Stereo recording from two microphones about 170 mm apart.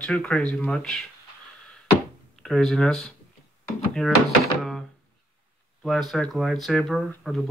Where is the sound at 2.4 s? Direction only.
5° left (ahead or behind).